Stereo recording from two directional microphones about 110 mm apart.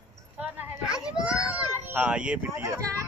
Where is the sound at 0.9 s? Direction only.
5° right (ahead or behind).